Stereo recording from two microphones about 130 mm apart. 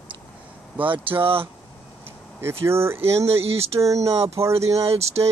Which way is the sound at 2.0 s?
20° right (ahead or behind).